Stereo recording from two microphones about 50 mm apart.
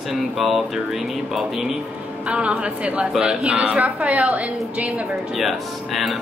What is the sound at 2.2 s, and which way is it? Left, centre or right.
A woman's voice, right.